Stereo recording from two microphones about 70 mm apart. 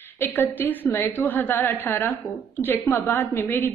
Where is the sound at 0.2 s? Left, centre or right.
Left.